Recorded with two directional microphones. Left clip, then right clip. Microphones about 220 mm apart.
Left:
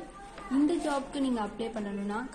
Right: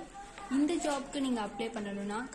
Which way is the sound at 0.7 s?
20° right (ahead or behind).